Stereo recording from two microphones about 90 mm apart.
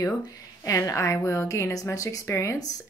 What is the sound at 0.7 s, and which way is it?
A woman's voice, 40° left (ahead or behind).